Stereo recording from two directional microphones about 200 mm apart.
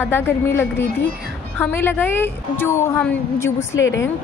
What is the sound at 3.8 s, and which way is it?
Speech, 70° left (ahead or behind).